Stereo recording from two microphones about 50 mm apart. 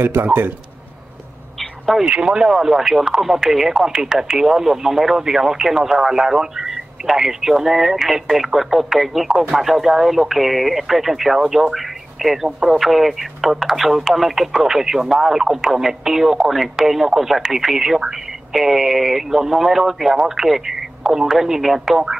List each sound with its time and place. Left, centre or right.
0.0 s a man's voice: right
1.6 s a sound: centre
2.0 s speech: centre